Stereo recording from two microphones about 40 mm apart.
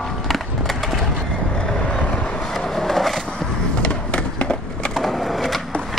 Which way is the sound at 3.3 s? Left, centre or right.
Left.